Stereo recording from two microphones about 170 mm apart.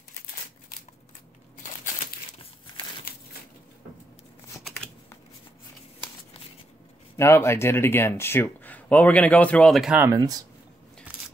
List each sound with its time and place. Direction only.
7.2 s speech: 15° left (ahead or behind); by 10.0 s 5° right (ahead or behind)
10.0 s speech: 20° right (ahead or behind)